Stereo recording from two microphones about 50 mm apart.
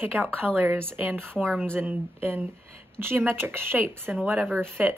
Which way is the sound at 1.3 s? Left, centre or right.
Centre.